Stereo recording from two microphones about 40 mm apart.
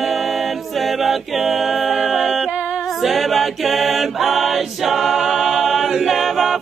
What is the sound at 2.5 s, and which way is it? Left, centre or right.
A capella, right.